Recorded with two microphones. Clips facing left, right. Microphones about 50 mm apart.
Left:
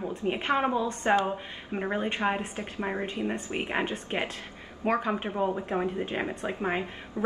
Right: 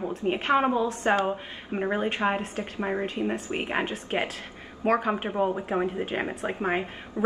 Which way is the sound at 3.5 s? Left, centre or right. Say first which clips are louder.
Right 1 dB; centre.